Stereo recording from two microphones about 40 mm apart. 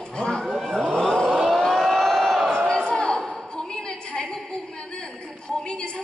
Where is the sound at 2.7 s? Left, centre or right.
Left.